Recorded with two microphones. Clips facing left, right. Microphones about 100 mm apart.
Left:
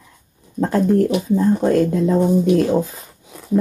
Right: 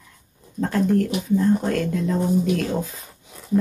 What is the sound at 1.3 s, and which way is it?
Speech, 25° left (ahead or behind).